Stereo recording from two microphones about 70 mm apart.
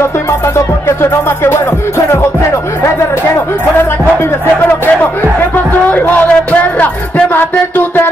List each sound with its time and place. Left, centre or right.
5.7 s speech: left